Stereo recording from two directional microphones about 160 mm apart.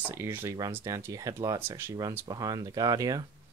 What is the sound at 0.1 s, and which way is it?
Speech, 15° right (ahead or behind).